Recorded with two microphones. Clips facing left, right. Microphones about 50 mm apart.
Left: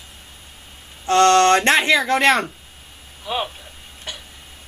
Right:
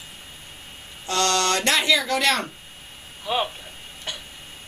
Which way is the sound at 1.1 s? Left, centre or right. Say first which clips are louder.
Left 9 dB; left.